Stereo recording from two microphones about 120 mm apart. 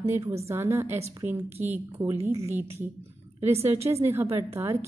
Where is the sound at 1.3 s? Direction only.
60° right (ahead or behind).